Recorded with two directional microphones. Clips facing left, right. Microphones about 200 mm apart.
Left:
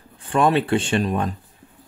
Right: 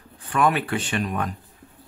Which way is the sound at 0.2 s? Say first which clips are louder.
Left 3 dB; 25° left (ahead or behind).